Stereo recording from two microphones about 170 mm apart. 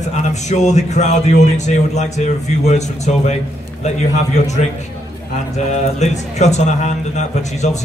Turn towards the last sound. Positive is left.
turn(degrees=45)  # may be behind; listen again after turning